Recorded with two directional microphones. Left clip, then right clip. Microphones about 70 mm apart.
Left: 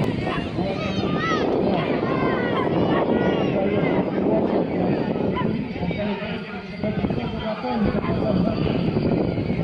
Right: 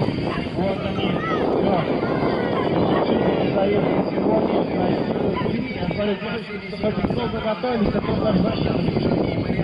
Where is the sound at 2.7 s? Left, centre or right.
Left.